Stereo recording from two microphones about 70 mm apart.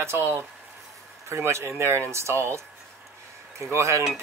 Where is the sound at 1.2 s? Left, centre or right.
Right.